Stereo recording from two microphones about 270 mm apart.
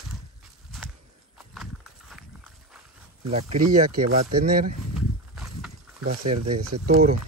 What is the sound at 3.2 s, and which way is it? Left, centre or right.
Speech, right.